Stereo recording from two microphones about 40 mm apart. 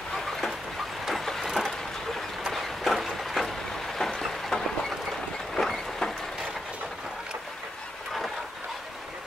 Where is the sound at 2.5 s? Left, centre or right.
Centre.